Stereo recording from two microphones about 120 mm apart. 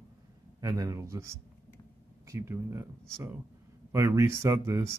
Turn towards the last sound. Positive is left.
turn(degrees=-25)  # may be behind; listen again after turning